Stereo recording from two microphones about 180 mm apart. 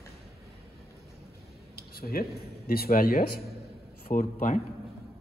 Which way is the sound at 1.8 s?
55° left (ahead or behind).